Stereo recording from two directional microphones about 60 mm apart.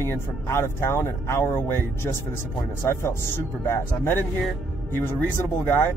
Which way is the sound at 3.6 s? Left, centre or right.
Left.